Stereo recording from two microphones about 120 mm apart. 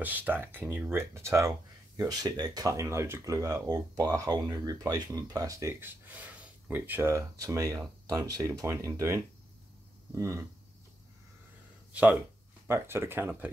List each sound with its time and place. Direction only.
0.0 s speech: 15° right (ahead or behind)
11.9 s speech: 10° right (ahead or behind)